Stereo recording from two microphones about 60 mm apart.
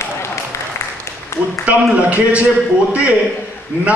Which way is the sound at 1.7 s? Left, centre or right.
Right.